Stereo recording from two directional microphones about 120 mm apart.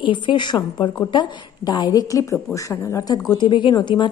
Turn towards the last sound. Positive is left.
turn(degrees=40)  # may be behind; listen again after turning